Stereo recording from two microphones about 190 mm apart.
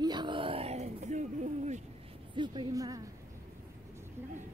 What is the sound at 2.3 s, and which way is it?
Speech, 25° right (ahead or behind).